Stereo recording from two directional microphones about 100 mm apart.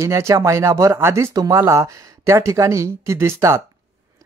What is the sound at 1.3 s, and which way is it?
Speech, 35° right (ahead or behind).